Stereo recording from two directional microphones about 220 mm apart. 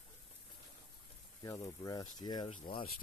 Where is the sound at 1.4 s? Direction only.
15° left (ahead or behind).